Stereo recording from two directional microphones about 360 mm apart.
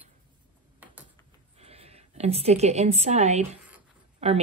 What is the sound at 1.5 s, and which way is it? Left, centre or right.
A woman's voice, centre.